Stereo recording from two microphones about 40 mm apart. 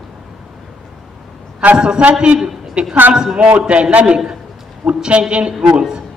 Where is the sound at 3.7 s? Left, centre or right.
Right.